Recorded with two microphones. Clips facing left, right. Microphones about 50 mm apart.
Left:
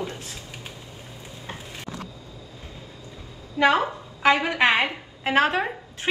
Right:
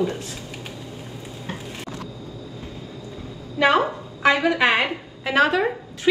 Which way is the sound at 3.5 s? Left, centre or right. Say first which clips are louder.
Right 2 dB; right.